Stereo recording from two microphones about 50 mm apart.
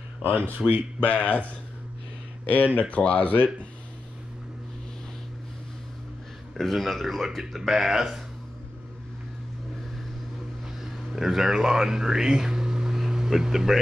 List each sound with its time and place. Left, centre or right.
0.6 s speech: left
2.4 s speech: left
6.5 s speech: centre
10.8 s speech: centre